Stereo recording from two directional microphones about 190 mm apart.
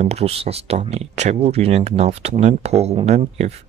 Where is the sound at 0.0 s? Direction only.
35° right (ahead or behind).